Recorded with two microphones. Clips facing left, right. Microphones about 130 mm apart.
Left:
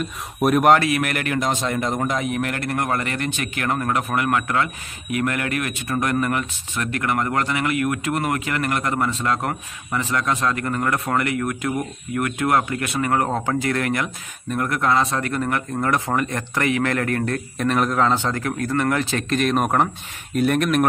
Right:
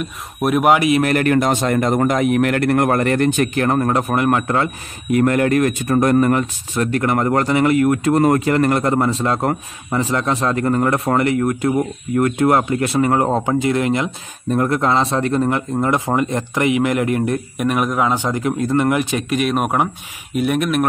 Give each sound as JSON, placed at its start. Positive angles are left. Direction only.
{"t": 0.0, "sound": "speech", "side_deg": 0}
{"t": 0.7, "sound": "speech", "side_deg": -20}
{"t": 1.0, "sound": "speech", "side_deg": -40}